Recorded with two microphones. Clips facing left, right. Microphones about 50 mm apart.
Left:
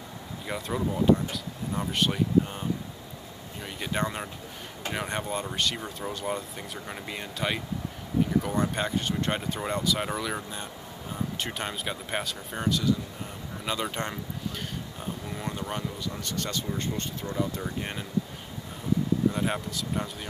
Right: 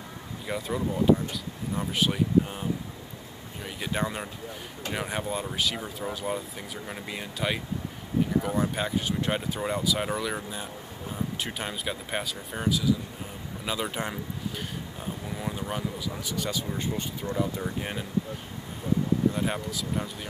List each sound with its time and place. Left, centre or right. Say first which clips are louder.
0.5 s speech: even; centre
3.6 s speech: even; centre
15.3 s speech: right 1 dB; centre
19.3 s speech: even; centre